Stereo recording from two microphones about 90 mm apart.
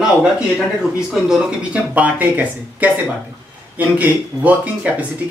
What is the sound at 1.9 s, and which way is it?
Speech, 20° right (ahead or behind).